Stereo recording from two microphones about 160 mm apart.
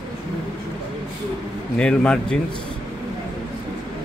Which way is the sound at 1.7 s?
5° left (ahead or behind).